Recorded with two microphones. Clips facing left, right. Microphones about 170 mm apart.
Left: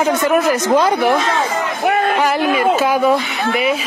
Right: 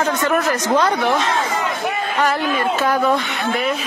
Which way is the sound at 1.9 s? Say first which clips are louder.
Left 8 dB; 65° left (ahead or behind).